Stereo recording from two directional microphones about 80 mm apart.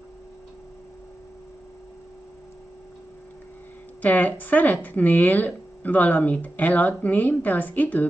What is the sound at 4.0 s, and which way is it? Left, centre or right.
Speech, centre.